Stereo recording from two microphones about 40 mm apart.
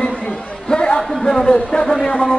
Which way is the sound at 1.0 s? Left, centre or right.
Centre.